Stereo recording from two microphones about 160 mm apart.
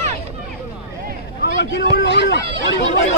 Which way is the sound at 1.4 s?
90° left.